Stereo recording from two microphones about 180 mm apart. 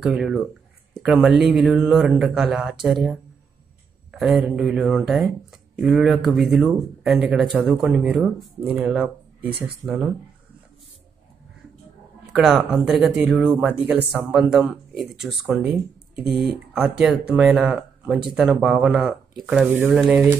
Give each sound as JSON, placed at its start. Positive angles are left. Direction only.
{"t": 0.0, "sound": "speech", "side_deg": 0}
{"t": 12.3, "sound": "speech", "side_deg": -5}